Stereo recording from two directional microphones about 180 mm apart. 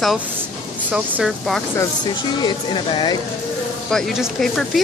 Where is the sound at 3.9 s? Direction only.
Centre (ahead or behind).